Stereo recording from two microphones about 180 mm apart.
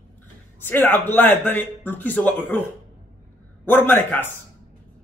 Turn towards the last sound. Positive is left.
turn(degrees=10)  # may be behind; listen again after turning